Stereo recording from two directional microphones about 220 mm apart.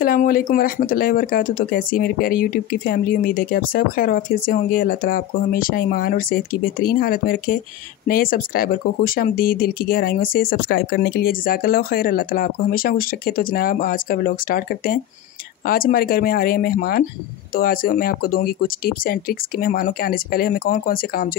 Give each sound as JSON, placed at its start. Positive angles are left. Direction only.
{"t": 0.0, "sound": "speech", "side_deg": 40}